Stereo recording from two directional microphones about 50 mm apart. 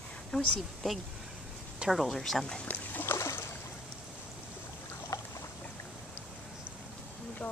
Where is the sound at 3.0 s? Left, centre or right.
Left.